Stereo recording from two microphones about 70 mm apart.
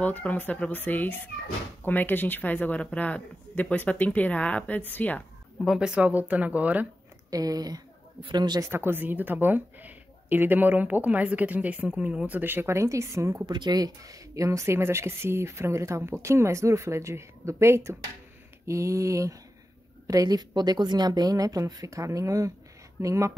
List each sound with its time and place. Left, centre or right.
0.0 s speech: left
5.7 s speech: centre
7.2 s a woman's voice: right
8.5 s speech: right; by 12.4 s centre
12.4 s speech: right
12.7 s speech: right
13.5 s speech: right
20.1 s a woman's voice: right